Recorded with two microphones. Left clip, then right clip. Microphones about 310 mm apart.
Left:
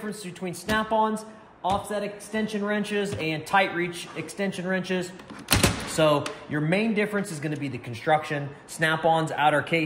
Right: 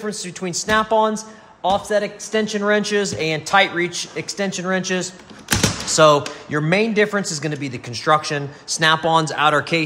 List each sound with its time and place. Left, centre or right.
0.2 s speech: centre